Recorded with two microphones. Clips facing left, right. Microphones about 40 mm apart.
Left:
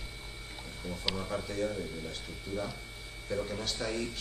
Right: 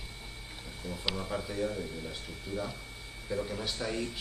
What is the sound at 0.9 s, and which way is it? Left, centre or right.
A man's voice, centre.